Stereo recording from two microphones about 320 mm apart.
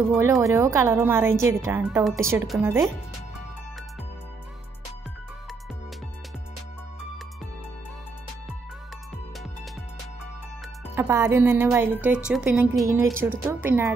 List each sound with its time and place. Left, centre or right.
0.2 s speech: centre
11.0 s speech: centre